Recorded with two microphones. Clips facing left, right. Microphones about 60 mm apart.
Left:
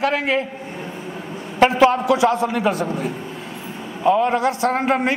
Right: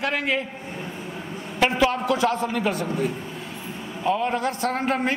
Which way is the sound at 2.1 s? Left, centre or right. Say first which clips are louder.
Left 5 dB; centre.